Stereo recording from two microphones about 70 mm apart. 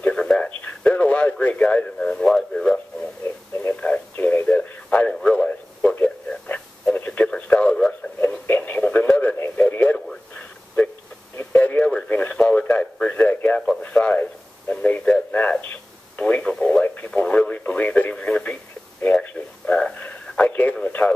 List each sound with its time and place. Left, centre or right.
0.0 s radio: centre
3.6 s radio: left
4.5 s radio: centre
8.2 s radio: left
11.3 s radio: left
13.8 s a sound: centre
14.7 s radio: centre
19.3 s a sound: centre
20.3 s radio: left